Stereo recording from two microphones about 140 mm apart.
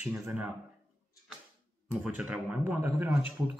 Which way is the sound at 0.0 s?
10° right (ahead or behind).